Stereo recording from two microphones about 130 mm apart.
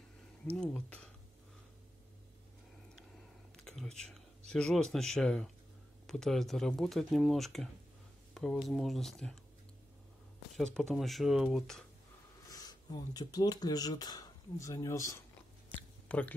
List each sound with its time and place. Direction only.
0.6 s speech: 10° left (ahead or behind)
3.5 s speech: 5° left (ahead or behind)
10.5 s speech: 5° left (ahead or behind)
12.4 s speech: 30° left (ahead or behind)
16.1 s speech: 10° left (ahead or behind)